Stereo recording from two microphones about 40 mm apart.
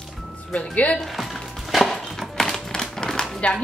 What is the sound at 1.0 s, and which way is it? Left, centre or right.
Speech, centre.